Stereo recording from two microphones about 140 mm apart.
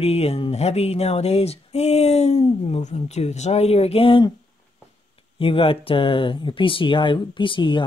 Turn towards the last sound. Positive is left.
turn(degrees=35)  # may be behind; listen again after turning